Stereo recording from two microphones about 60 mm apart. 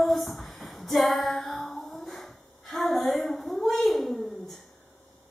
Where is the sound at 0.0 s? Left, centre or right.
Centre.